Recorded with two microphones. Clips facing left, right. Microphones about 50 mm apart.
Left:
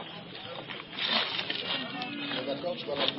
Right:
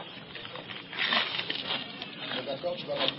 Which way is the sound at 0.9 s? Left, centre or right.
Right.